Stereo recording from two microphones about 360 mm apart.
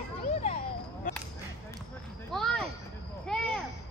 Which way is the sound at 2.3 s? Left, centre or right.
Centre.